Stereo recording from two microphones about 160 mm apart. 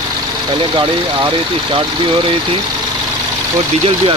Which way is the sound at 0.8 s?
30° right (ahead or behind).